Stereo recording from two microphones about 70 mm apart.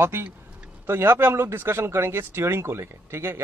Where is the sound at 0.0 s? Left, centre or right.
Right.